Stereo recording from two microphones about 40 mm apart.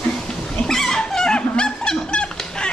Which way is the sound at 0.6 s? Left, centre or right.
Centre.